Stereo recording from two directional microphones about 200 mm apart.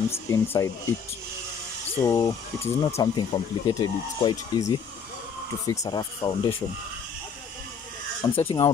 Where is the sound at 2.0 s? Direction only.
15° left (ahead or behind).